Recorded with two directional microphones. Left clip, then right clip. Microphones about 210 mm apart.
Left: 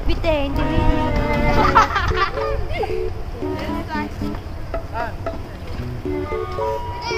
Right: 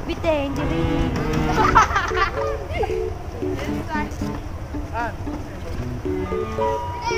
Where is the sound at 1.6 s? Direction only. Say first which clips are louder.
Even; 20° left (ahead or behind).